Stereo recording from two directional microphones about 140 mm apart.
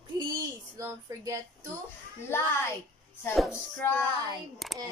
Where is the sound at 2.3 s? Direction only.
15° left (ahead or behind).